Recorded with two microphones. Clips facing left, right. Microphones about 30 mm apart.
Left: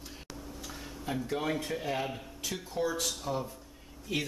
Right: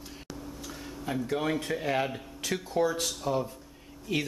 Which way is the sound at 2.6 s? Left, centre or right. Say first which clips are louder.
Right 4 dB; centre.